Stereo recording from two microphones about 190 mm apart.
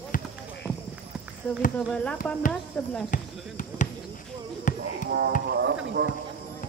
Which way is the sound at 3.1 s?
45° left (ahead or behind).